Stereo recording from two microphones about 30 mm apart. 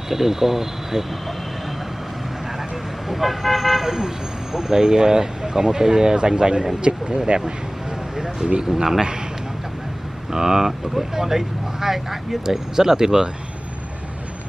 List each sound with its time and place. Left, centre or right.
0.1 s speech: centre
3.1 s speech: centre; by 6.1 s right
6.1 s speech: right
8.5 s speech: right
10.3 s speech: centre